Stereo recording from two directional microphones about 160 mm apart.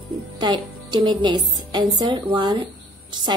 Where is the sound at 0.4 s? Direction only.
25° right (ahead or behind).